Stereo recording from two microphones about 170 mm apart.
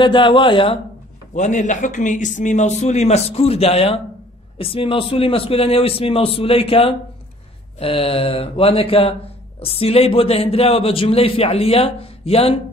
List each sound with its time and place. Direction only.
0.0 s speech: 30° left (ahead or behind)
1.3 s a man's voice: 45° left (ahead or behind)